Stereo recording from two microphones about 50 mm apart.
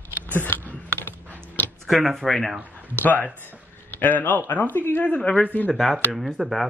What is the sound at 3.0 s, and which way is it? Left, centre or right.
Speech, left.